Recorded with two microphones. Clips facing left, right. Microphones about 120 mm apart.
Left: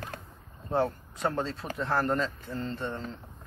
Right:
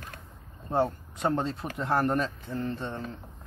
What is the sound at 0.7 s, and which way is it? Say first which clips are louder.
Speech: right 1 dB; 20° right (ahead or behind).